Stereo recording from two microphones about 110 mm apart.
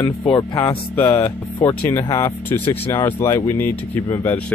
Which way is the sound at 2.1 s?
30° left (ahead or behind).